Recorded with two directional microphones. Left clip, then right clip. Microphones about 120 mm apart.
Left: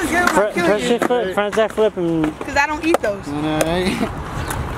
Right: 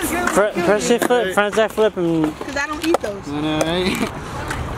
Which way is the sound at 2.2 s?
35° left (ahead or behind).